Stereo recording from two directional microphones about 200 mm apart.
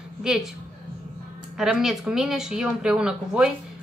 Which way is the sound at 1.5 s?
Centre (ahead or behind).